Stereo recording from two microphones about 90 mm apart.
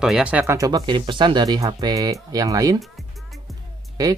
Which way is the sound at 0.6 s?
45° right (ahead or behind).